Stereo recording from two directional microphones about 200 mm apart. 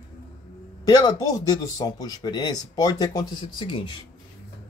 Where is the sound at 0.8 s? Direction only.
20° left (ahead or behind).